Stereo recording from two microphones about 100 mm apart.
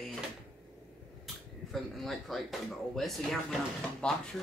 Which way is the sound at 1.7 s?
Centre (ahead or behind).